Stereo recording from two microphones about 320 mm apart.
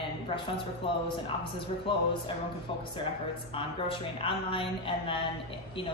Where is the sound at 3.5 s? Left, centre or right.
Centre.